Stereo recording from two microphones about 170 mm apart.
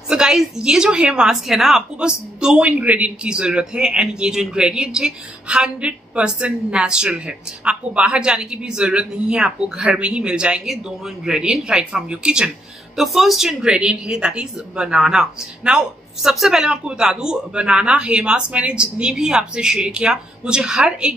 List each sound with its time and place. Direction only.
0.1 s a woman's voice: 5° right (ahead or behind)